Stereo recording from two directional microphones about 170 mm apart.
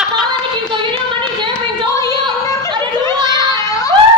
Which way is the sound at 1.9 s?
20° left (ahead or behind).